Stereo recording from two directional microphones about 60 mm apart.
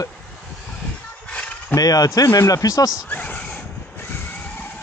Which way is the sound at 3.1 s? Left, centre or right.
Left.